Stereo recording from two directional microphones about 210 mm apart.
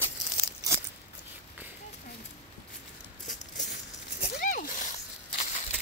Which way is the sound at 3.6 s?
40° left (ahead or behind).